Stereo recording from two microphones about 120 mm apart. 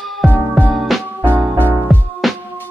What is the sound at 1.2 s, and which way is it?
Music, 15° right (ahead or behind).